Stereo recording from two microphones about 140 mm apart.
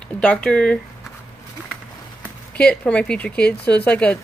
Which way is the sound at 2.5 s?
10° left (ahead or behind).